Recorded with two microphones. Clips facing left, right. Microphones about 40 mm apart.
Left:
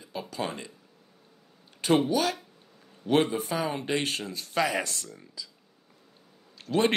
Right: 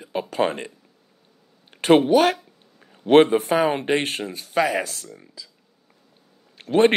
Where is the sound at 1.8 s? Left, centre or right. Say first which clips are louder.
Right 9 dB; right.